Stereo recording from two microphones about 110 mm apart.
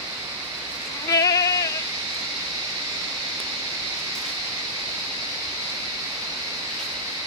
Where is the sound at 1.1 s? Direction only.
30° left (ahead or behind).